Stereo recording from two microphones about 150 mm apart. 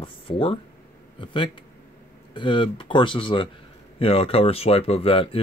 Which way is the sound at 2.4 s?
35° left (ahead or behind).